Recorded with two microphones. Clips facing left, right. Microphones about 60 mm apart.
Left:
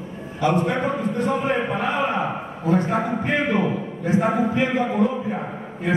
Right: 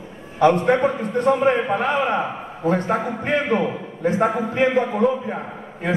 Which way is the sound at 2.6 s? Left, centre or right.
Right.